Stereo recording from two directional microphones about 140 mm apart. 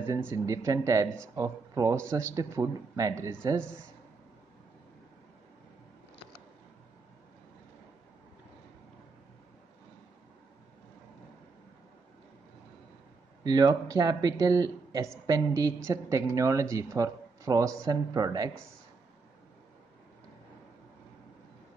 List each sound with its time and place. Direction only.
0.0 s a woman's voice: 20° right (ahead or behind)
13.4 s a woman's voice: 30° right (ahead or behind)